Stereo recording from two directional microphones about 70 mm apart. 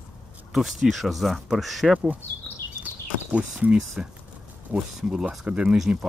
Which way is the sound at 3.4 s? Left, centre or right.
Centre.